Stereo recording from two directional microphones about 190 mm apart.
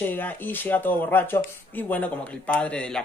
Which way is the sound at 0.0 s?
10° left (ahead or behind).